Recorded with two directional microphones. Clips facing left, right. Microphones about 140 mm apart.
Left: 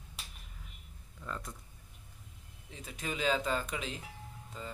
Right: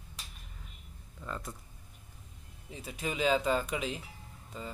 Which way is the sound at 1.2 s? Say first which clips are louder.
Right 1 dB; 5° right (ahead or behind).